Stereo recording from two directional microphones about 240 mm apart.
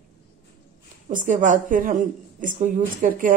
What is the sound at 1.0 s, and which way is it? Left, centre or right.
A woman's voice, right.